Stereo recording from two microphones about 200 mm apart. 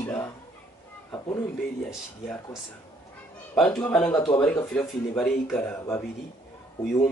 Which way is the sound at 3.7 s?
10° left (ahead or behind).